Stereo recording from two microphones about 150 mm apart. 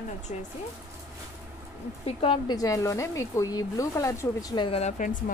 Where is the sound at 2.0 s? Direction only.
35° left (ahead or behind).